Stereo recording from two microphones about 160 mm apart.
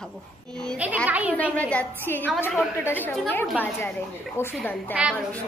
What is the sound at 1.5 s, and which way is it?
A woman's voice, 10° left (ahead or behind).